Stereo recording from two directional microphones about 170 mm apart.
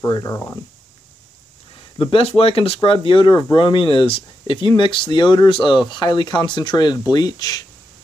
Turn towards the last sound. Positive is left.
turn(degrees=20)  # may be behind; listen again after turning